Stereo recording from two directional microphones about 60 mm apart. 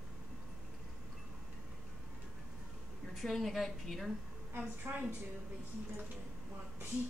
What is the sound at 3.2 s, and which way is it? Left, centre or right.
Speech, centre.